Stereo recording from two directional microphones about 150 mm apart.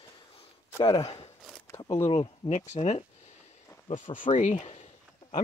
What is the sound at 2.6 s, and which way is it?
Speech, 50° left (ahead or behind).